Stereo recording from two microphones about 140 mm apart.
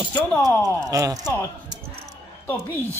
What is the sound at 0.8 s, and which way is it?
Speech, 25° right (ahead or behind).